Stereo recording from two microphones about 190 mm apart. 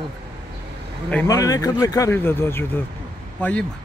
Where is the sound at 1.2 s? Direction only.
15° left (ahead or behind).